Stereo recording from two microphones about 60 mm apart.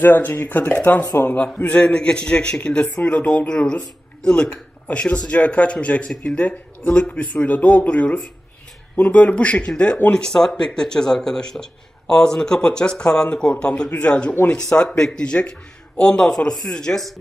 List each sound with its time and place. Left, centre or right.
0.0 s speech: left; by 17.0 s centre